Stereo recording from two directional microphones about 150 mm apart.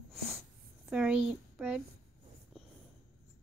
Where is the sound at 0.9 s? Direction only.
5° right (ahead or behind).